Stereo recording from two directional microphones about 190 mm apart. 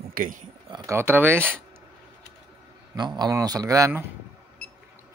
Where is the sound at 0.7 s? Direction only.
25° right (ahead or behind).